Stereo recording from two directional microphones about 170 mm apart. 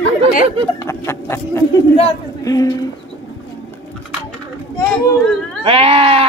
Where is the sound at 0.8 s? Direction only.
15° left (ahead or behind).